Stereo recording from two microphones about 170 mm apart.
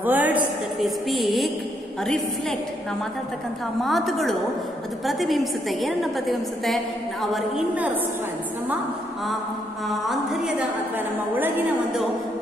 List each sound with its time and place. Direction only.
0.0 s a woman's voice: 10° right (ahead or behind)
3.8 s a woman's voice: centre (ahead or behind)
9.8 s a woman's voice: centre (ahead or behind)
11.3 s a woman's voice: 10° right (ahead or behind)